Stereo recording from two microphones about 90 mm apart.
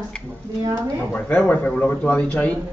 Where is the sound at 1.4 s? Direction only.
15° left (ahead or behind).